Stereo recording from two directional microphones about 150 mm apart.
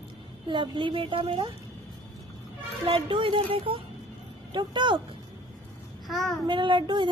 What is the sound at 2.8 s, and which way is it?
A woman's voice, 35° right (ahead or behind).